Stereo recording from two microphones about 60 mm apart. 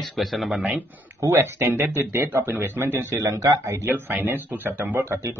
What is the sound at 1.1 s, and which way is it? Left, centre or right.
A man's voice, right.